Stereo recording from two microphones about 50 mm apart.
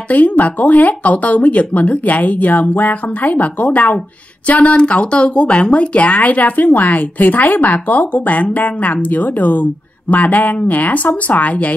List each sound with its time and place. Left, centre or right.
0.1 s speech: left